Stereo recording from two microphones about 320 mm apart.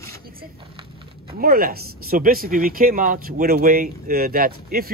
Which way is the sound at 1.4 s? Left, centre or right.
Right.